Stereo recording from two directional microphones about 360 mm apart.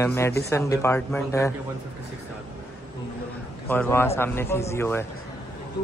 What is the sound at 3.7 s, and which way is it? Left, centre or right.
Speech, centre.